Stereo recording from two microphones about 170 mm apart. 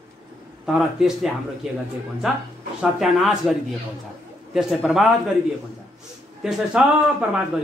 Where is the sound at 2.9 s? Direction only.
Centre (ahead or behind).